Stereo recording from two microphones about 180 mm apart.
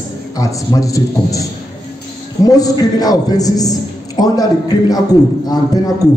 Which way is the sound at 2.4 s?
20° left (ahead or behind).